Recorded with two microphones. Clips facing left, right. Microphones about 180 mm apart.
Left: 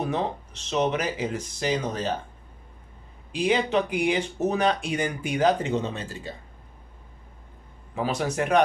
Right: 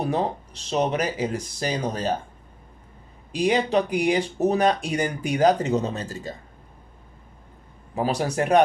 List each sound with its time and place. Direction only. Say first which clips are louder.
0.0 s speech: right 3 dB; 35° right (ahead or behind)
3.3 s speech: right 2 dB; 40° right (ahead or behind)
7.9 s speech: right 2 dB; 35° right (ahead or behind)